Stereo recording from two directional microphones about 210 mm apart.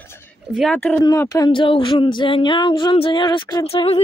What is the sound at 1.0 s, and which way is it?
Speech, 15° left (ahead or behind).